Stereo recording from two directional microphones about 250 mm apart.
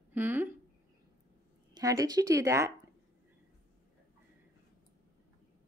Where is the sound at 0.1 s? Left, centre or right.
Centre.